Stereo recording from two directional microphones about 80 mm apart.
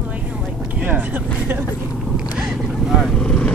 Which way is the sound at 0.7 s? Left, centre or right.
Centre.